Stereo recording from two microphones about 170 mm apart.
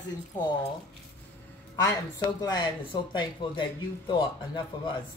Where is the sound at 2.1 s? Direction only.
25° left (ahead or behind).